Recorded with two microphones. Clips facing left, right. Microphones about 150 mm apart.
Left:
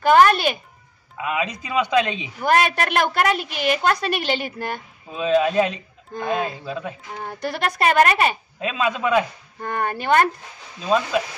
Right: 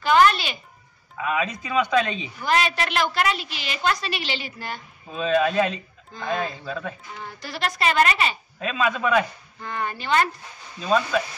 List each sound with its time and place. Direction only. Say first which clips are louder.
0.0 s a woman's voice: left 4 dB; 50° left (ahead or behind)
1.1 s a man's voice: even; 15° left (ahead or behind)
2.4 s a woman's voice: left 4 dB; 50° left (ahead or behind)
5.1 s a man's voice: left 3 dB; 15° left (ahead or behind)
7.2 s a woman's voice: left 8 dB; 55° left (ahead or behind)
8.5 s a man's voice: left 1 dB; 20° left (ahead or behind)
9.6 s a woman's voice: left 5 dB; 50° left (ahead or behind)